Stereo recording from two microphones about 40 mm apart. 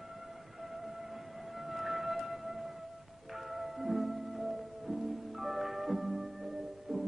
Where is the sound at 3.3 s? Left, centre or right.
Centre.